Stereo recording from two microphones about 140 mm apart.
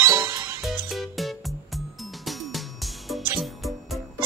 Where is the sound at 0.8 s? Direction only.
Centre (ahead or behind).